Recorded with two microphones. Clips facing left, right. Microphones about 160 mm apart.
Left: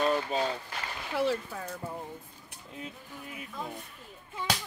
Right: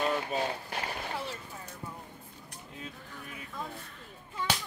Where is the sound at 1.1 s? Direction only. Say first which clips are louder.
Left 9 dB; 90° left.